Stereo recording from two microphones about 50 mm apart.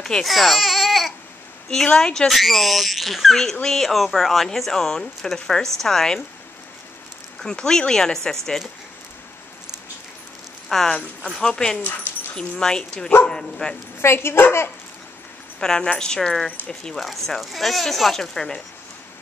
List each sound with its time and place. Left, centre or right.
0.0 s speech: centre
0.3 s speech: centre
2.0 s speech: centre
2.2 s speech: centre
7.5 s speech: centre
10.7 s speech: centre
14.0 s speech: left
15.6 s speech: centre
16.9 s speech: centre